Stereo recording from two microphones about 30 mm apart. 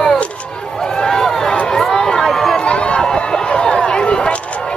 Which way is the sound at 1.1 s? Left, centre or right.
Centre.